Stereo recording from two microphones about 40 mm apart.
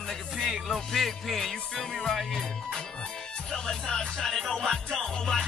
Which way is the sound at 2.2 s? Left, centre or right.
Centre.